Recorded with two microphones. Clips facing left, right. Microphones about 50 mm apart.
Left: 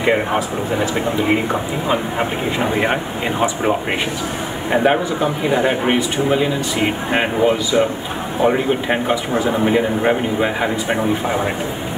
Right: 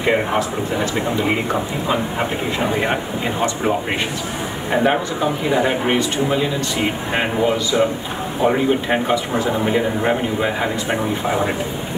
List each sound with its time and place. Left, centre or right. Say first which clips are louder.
0.0 s speech: left 1 dB; centre